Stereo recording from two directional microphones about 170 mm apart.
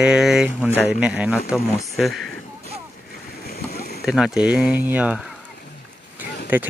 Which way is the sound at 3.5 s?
60° left (ahead or behind).